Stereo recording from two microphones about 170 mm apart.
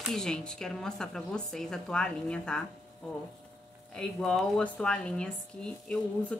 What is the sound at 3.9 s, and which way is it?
Speech, 5° left (ahead or behind).